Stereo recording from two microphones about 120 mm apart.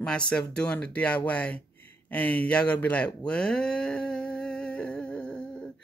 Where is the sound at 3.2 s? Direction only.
10° left (ahead or behind).